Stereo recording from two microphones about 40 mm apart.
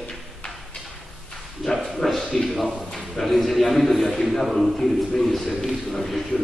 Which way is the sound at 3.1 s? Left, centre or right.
Centre.